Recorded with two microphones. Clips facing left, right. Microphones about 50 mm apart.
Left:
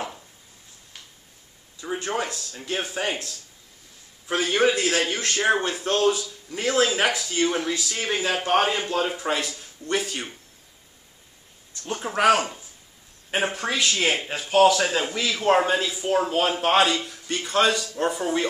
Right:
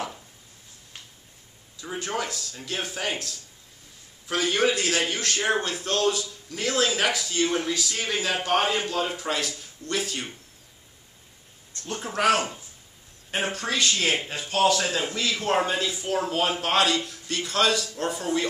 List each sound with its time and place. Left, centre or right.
1.8 s a man's voice: left
11.8 s speech: centre
16.1 s a man's voice: left